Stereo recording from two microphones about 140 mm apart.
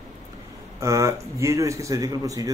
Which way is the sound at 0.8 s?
20° right (ahead or behind).